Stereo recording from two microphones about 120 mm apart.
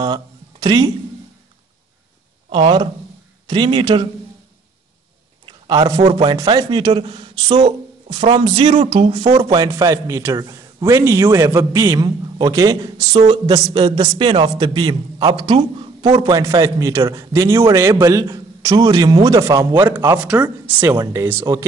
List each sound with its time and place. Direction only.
0.0 s speech: 35° right (ahead or behind)
2.5 s speech: 50° right (ahead or behind)
5.4 s a sound: 40° right (ahead or behind)
6.4 s speech: 40° right (ahead or behind); by 9.1 s 55° right (ahead or behind)
9.1 s a man's voice: 40° right (ahead or behind)
16.1 s a man's voice: 35° right (ahead or behind); by 21.6 s 20° right (ahead or behind)